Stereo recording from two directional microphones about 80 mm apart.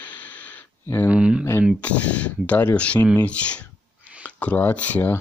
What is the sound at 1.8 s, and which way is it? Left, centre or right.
Speech, centre.